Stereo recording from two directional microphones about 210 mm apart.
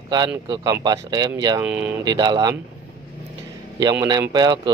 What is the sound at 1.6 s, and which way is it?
Speech, 5° right (ahead or behind).